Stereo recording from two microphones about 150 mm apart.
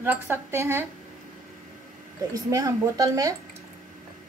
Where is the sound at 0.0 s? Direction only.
15° right (ahead or behind).